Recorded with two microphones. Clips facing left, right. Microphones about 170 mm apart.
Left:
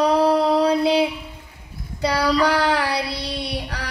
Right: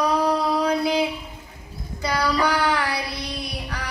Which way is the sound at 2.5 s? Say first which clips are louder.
Left 3 dB; 30° left (ahead or behind).